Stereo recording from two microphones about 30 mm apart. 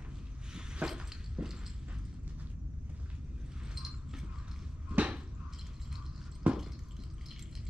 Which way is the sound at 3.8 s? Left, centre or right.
Centre.